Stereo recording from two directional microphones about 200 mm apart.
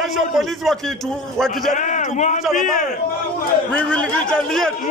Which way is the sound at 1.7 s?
40° left (ahead or behind).